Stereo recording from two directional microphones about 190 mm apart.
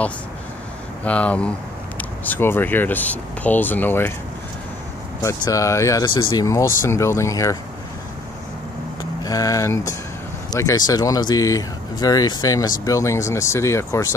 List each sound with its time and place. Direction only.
1.0 s speech: 5° left (ahead or behind)
5.2 s speech: 15° left (ahead or behind)
9.2 s speech: 20° left (ahead or behind)